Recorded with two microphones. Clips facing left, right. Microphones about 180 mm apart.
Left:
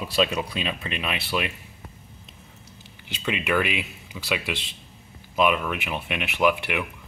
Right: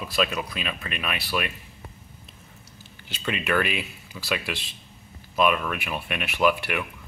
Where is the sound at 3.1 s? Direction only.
15° left (ahead or behind).